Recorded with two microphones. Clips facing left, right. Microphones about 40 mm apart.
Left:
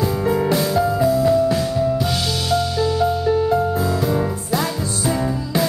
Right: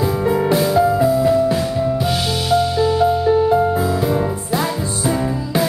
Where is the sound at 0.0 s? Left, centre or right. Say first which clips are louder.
Right 2 dB; centre.